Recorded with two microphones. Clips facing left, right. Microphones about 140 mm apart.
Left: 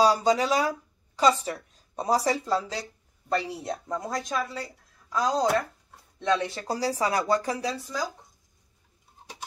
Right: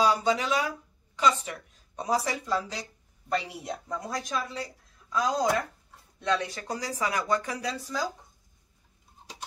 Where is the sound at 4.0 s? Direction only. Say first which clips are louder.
Left 2 dB; 25° left (ahead or behind).